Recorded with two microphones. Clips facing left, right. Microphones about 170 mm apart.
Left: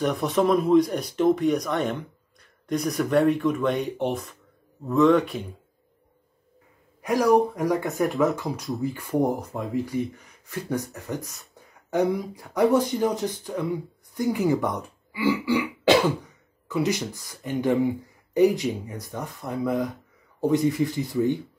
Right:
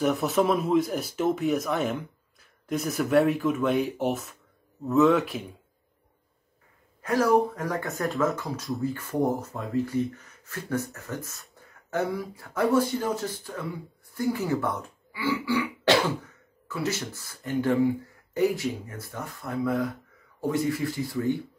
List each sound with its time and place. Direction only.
0.0 s speech: 5° right (ahead or behind)
7.0 s speech: 15° left (ahead or behind)
7.9 s speech: centre (ahead or behind)
8.4 s speech: 20° left (ahead or behind)
16.6 s speech: 15° left (ahead or behind)